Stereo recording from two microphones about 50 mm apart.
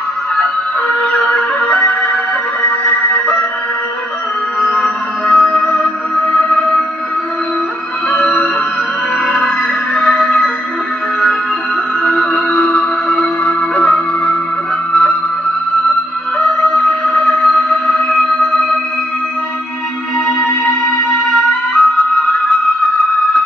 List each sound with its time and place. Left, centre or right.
1.2 s music: left
4.6 s music: left
8.1 s music: left
9.9 s music: left
12.0 s music: left
16.3 s music: left
20.2 s music: left